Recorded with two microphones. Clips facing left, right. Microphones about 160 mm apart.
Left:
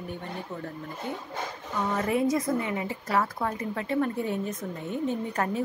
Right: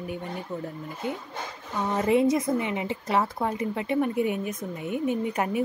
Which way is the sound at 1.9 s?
20° right (ahead or behind).